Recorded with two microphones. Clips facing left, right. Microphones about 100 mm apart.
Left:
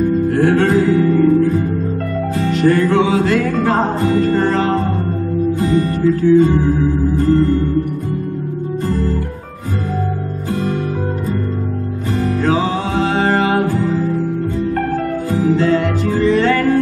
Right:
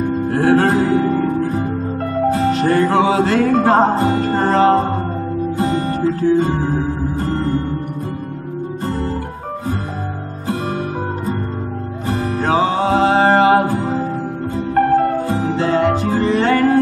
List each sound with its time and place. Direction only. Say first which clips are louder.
0.3 s music: right 2 dB; 35° right (ahead or behind)
12.1 s music: left 1 dB; 30° right (ahead or behind)